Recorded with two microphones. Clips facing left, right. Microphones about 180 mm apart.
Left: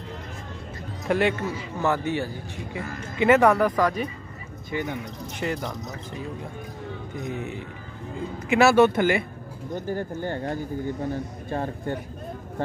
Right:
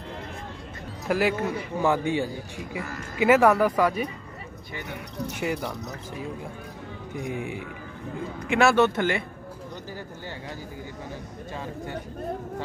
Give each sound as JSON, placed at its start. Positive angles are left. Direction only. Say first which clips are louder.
{"t": 1.0, "sound": "a man's voice", "louder": "left 1 dB", "side_deg": -5}
{"t": 1.3, "sound": "a man's voice", "louder": "right 2 dB", "side_deg": -60}
{"t": 1.8, "sound": "speech", "louder": "right 1 dB", "side_deg": -15}
{"t": 5.4, "sound": "speech", "louder": "left 1 dB", "side_deg": -10}
{"t": 7.2, "sound": "speech", "louder": "right 1 dB", "side_deg": -10}
{"t": 8.5, "sound": "speech", "louder": "left 3 dB", "side_deg": 5}
{"t": 9.8, "sound": "speech", "louder": "left 9 dB", "side_deg": 50}